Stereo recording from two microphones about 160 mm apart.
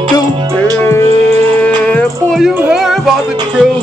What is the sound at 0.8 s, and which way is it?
Speech, 15° left (ahead or behind).